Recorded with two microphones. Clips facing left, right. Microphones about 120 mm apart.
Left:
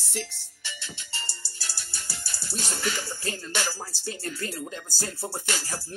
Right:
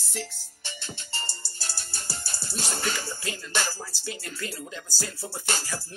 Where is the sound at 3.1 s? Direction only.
35° left (ahead or behind).